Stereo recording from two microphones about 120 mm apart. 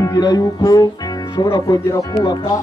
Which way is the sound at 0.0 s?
35° left (ahead or behind).